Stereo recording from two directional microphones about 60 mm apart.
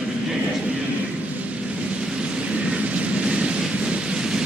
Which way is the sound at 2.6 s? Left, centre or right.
Right.